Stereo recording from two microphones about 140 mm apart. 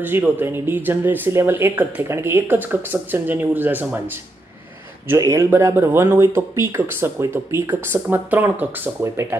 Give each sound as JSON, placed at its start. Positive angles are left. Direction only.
{"t": 0.0, "sound": "speech", "side_deg": -15}
{"t": 5.0, "sound": "speech", "side_deg": -20}